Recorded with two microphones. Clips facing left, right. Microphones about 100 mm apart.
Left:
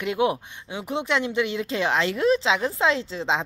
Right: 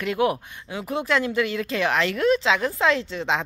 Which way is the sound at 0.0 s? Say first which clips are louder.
Right 1 dB; 20° left (ahead or behind).